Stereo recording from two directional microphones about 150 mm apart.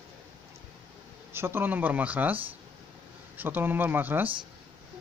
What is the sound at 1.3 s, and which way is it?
A man's voice, 15° right (ahead or behind).